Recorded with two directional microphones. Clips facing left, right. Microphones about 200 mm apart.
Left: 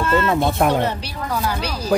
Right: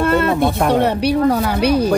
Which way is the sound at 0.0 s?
60° right (ahead or behind).